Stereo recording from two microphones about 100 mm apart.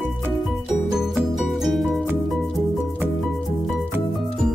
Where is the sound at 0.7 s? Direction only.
5° right (ahead or behind).